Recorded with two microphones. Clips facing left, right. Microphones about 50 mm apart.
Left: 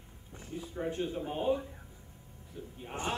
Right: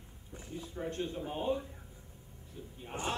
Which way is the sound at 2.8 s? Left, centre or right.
Centre.